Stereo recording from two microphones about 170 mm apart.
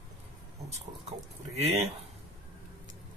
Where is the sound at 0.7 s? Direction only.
40° right (ahead or behind).